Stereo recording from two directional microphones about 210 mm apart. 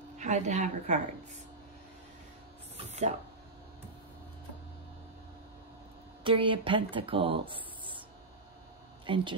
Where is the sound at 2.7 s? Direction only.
30° right (ahead or behind).